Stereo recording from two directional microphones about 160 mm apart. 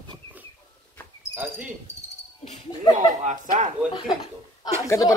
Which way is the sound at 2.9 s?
55° right (ahead or behind).